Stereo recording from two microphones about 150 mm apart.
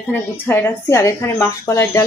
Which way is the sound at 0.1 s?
15° left (ahead or behind).